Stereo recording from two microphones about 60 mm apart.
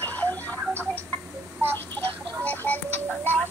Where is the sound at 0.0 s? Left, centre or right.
Left.